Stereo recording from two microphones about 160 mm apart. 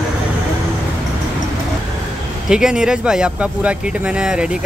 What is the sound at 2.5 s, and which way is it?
Speech, 5° right (ahead or behind).